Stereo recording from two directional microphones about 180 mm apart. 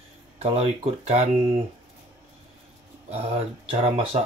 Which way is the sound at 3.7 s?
35° right (ahead or behind).